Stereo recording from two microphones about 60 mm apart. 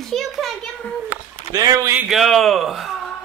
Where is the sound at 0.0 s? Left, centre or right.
Centre.